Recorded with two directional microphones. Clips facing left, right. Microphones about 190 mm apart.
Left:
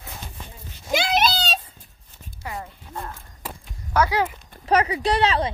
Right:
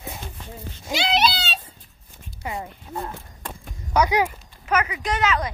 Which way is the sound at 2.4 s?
20° right (ahead or behind).